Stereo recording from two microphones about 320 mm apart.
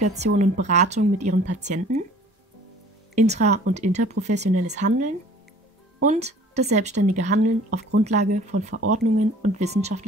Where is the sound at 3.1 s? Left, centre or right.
Right.